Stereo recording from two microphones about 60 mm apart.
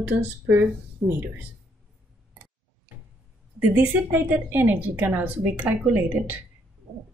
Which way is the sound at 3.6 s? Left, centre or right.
Right.